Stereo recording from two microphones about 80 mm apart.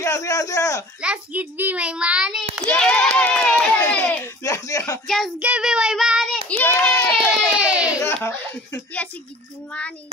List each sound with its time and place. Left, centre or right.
0.0 s a man's voice: left
1.0 s a child's voice: centre
2.8 s speech: centre
4.2 s a man's voice: left
5.0 s child singing: centre
5.4 s a child's voice: centre
6.5 s speech: centre
6.9 s a sound: centre
8.0 s speech: left